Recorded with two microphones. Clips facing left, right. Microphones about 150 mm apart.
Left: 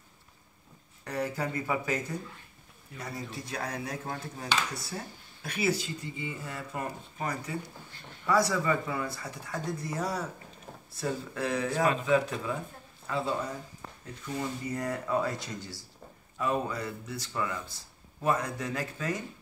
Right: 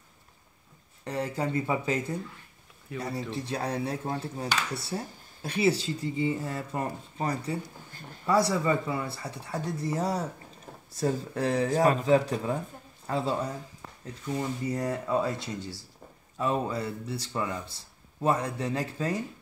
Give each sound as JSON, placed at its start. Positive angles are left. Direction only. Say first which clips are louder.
{"t": 1.0, "sound": "speech", "louder": "right 2 dB", "side_deg": -25}